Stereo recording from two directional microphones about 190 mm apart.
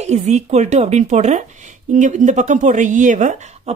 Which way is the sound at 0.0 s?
35° right (ahead or behind).